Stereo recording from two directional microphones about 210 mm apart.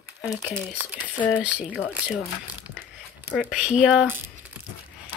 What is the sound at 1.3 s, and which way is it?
Speech, 5° right (ahead or behind).